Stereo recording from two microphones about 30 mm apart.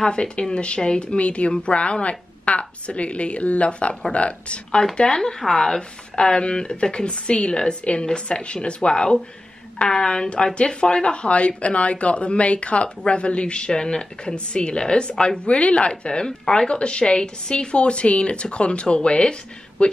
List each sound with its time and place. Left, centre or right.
0.0 s a woman's voice: left
4.9 s speech: left
6.1 s a woman's voice: left
13.7 s a woman's voice: left